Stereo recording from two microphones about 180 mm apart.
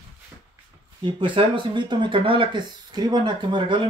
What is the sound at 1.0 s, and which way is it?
Speech, 30° right (ahead or behind).